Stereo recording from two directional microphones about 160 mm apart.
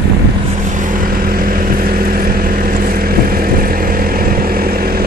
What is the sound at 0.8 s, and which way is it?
Vehicle, 55° right (ahead or behind).